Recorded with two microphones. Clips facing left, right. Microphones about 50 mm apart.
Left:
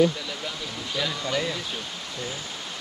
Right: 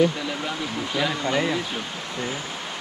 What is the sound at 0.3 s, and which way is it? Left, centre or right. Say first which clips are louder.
Speech: right 5 dB; right.